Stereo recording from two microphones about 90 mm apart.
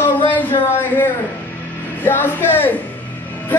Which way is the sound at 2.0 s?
25° left (ahead or behind).